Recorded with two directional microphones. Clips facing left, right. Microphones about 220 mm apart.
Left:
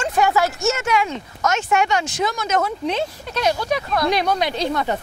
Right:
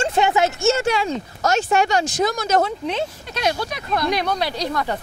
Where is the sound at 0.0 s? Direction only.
25° right (ahead or behind).